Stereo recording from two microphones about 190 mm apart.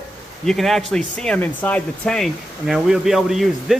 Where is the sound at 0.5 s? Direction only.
Centre (ahead or behind).